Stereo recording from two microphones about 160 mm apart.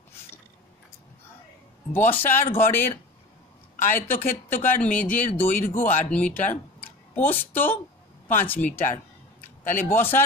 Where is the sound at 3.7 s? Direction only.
55° left (ahead or behind).